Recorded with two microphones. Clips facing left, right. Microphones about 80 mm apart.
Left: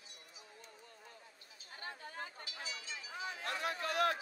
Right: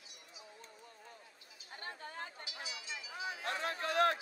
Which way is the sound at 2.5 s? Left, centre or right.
Left.